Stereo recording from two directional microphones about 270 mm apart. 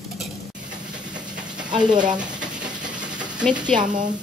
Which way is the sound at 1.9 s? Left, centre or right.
Centre.